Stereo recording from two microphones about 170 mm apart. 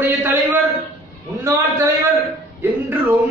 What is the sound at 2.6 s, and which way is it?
Music, 10° right (ahead or behind).